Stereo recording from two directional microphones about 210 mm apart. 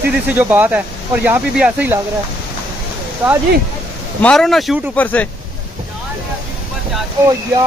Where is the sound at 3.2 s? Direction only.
5° right (ahead or behind).